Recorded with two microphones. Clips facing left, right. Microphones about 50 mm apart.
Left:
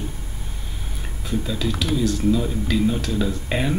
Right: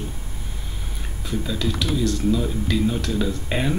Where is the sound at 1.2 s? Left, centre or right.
Centre.